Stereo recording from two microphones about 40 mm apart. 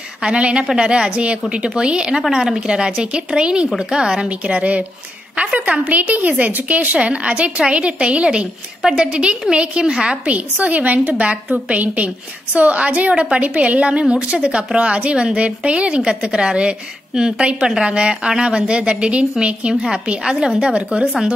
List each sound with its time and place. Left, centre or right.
0.2 s a woman's voice: right
4.3 s a woman's voice: right
10.2 s a woman's voice: right
19.7 s a woman's voice: centre
20.6 s a woman's voice: right